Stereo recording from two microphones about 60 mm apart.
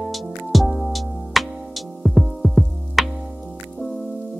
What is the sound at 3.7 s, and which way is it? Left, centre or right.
Music, centre.